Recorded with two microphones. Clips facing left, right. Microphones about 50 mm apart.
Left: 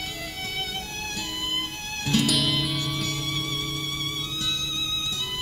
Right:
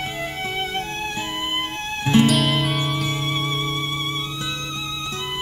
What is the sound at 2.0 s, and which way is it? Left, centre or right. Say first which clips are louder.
Music: right 8 dB; right.